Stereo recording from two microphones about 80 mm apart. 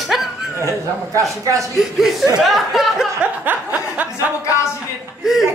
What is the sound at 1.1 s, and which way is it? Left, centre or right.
Speech, right.